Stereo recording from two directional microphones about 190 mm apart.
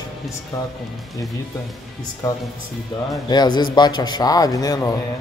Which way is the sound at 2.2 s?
15° left (ahead or behind).